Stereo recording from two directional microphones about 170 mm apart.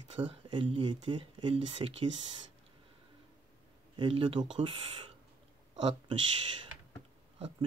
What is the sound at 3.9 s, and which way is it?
Speech, 30° right (ahead or behind).